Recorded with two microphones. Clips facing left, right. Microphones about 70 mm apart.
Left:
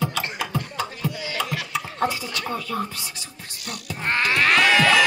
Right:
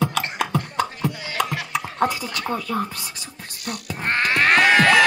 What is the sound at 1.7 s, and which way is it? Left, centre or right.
Chuckle, right.